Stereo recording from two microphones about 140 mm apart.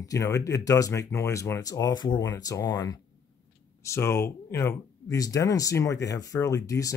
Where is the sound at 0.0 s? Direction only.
25° left (ahead or behind).